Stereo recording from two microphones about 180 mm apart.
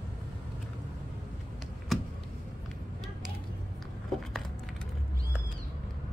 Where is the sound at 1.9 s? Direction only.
Centre (ahead or behind).